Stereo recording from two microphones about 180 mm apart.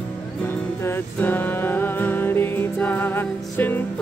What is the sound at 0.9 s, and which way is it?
Music, 10° left (ahead or behind).